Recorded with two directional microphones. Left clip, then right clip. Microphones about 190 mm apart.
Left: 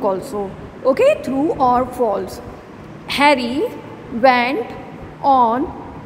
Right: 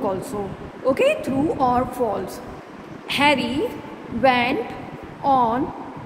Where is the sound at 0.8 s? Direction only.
25° left (ahead or behind).